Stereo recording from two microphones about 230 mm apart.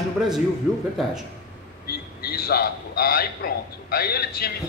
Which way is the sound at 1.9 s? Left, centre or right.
Left.